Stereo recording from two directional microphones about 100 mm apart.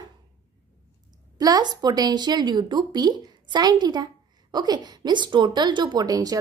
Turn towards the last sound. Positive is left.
turn(degrees=-40)  # may be behind; listen again after turning